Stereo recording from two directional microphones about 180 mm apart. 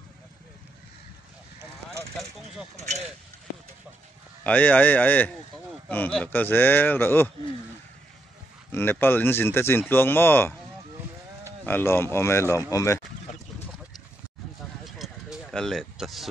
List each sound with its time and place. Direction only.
2.7 s speech: 40° right (ahead or behind)
4.5 s speech: 10° left (ahead or behind)
8.7 s speech: 10° left (ahead or behind)
11.6 s speech: 10° left (ahead or behind)
14.9 s a sound: centre (ahead or behind)